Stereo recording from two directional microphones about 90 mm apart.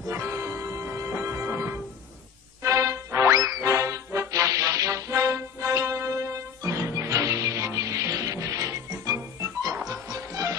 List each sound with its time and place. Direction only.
0.1 s music: 35° right (ahead or behind)